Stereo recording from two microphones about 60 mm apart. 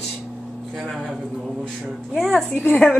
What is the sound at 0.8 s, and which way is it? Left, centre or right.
Speech, centre.